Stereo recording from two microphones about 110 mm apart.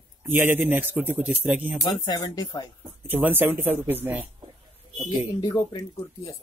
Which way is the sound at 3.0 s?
15° right (ahead or behind).